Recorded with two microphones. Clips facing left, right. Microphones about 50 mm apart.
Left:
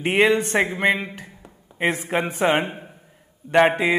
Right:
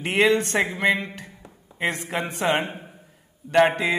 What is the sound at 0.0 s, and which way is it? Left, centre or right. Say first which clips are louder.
A woman's voice: left 2 dB; centre.